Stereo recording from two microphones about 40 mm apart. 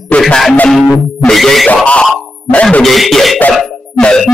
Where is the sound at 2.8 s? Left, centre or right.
Centre.